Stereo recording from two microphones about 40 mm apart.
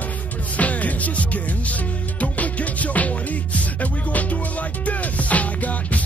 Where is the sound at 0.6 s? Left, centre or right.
Left.